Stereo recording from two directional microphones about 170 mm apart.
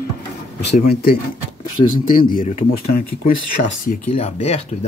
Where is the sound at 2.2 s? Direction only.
55° left (ahead or behind).